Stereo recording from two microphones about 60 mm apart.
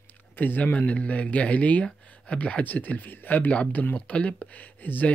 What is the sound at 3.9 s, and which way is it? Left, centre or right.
Speech, centre.